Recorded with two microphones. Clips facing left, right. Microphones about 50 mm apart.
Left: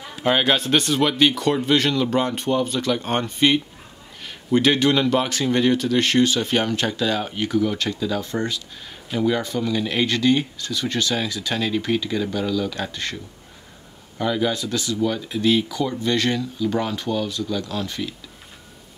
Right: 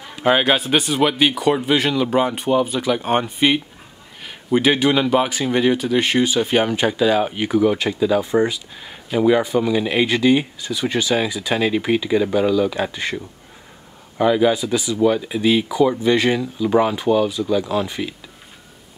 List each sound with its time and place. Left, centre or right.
0.2 s speech: centre